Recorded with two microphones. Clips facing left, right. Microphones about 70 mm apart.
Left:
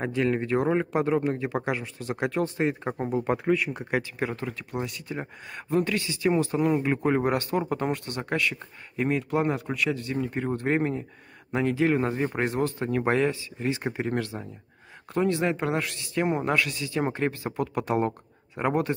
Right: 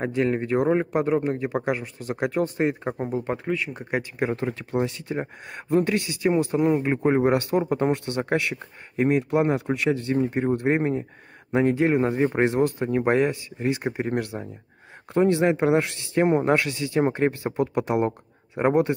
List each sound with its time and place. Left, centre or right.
0.0 s speech: centre
4.2 s speech: right
5.2 s speech: centre
5.8 s speech: right
6.3 s speech: centre
15.1 s speech: right